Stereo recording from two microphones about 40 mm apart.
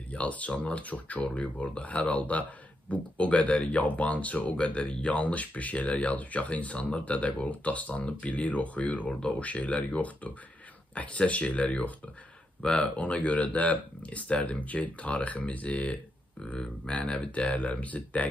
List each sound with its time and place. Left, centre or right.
0.1 s speech: left
16.5 s speech: left